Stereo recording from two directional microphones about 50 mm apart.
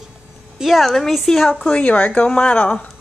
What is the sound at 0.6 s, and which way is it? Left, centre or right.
A woman's voice, centre.